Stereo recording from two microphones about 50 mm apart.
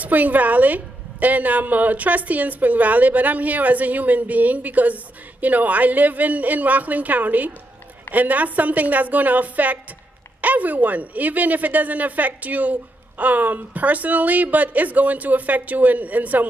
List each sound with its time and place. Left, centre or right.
0.0 s a woman's voice: right